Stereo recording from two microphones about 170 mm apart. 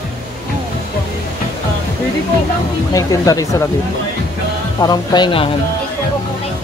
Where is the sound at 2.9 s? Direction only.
20° left (ahead or behind).